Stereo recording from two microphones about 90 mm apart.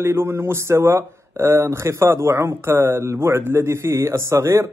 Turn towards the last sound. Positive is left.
turn(degrees=-35)  # may be behind; listen again after turning